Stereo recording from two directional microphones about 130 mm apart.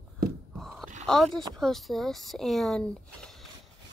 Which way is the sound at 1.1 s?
5° left (ahead or behind).